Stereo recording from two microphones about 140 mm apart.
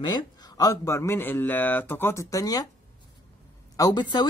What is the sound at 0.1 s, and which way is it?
Speech, 25° left (ahead or behind).